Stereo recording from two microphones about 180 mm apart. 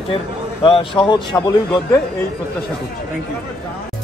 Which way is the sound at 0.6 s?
30° left (ahead or behind).